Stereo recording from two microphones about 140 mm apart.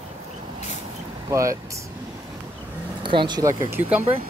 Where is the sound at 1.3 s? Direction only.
20° right (ahead or behind).